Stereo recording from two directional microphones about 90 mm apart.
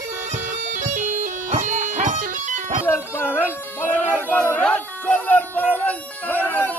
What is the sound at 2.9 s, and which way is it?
Music, 25° left (ahead or behind).